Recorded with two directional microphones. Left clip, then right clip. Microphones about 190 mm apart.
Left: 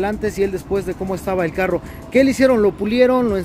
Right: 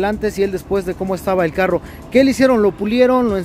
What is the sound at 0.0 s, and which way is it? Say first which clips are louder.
Speech: right 2 dB; 20° right (ahead or behind).